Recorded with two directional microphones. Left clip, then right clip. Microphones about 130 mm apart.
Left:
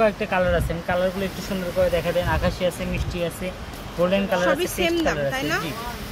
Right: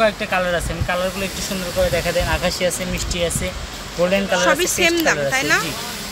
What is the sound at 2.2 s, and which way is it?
Speech, 10° right (ahead or behind).